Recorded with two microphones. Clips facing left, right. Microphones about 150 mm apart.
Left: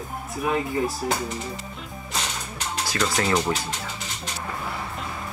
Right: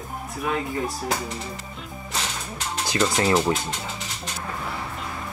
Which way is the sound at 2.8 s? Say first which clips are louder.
Right 3 dB; 20° right (ahead or behind).